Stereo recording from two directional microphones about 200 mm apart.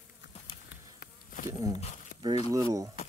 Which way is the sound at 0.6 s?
45° left (ahead or behind).